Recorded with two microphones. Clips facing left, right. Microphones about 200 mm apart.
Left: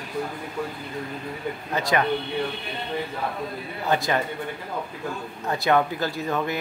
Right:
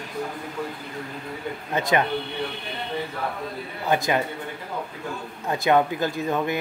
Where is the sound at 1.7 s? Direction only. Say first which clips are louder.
Right 2 dB; 20° right (ahead or behind).